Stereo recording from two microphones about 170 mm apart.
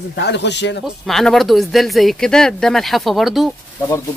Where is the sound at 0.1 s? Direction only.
90° left.